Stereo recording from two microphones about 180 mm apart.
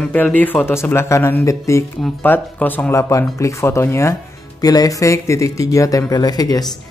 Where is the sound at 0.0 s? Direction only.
10° left (ahead or behind).